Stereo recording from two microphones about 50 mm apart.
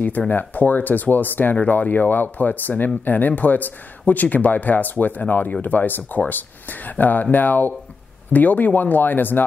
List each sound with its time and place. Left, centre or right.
0.3 s speech: left